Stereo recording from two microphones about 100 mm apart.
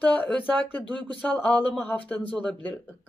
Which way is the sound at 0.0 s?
15° left (ahead or behind).